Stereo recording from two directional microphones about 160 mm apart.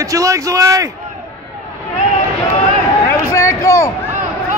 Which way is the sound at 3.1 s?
20° left (ahead or behind).